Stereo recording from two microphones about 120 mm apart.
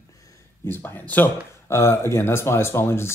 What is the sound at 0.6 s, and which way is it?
Speech, 15° left (ahead or behind).